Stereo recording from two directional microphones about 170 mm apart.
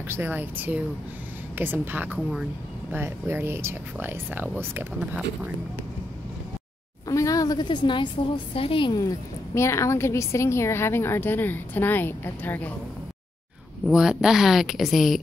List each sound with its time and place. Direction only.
0.1 s speech: 10° right (ahead or behind)
7.1 s a sound: 20° left (ahead or behind)
8.5 s a woman's voice: 30° left (ahead or behind)
9.5 s a woman's voice: 15° left (ahead or behind)
13.8 s a woman's voice: 5° right (ahead or behind)